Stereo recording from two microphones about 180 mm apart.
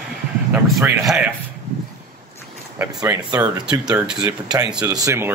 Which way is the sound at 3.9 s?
5° right (ahead or behind).